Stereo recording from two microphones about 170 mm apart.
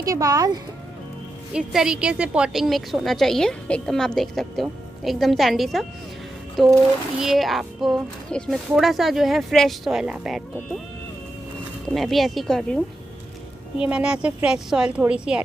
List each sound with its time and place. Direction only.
0.0 s speech: 20° right (ahead or behind)
1.5 s a woman's voice: 5° right (ahead or behind)
11.9 s a woman's voice: centre (ahead or behind)